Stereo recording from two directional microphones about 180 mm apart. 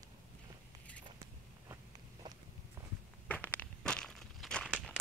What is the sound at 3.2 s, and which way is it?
Walk, 10° left (ahead or behind).